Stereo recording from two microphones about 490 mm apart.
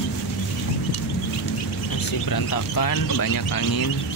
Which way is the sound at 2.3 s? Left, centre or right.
Left.